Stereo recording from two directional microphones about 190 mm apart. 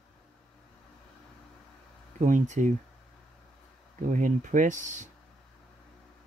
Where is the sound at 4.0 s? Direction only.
45° right (ahead or behind).